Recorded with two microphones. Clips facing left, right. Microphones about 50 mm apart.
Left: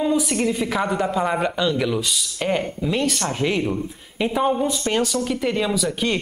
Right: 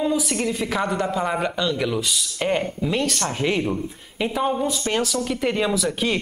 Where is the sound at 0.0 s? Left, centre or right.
Centre.